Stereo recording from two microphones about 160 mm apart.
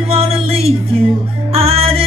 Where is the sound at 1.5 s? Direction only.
35° right (ahead or behind).